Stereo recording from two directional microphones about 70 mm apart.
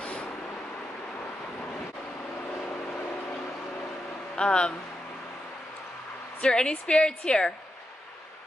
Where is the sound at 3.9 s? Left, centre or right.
Centre.